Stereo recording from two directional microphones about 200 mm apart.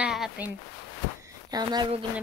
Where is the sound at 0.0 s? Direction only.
5° right (ahead or behind).